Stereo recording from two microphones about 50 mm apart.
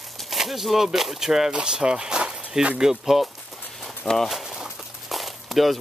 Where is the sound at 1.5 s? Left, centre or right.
Centre.